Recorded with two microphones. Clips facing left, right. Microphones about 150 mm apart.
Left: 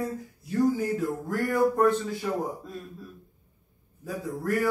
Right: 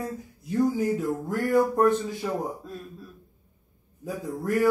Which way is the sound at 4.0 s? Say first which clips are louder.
Right 1 dB; 15° right (ahead or behind).